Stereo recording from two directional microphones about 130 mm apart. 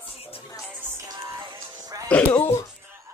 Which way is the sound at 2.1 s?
15° left (ahead or behind).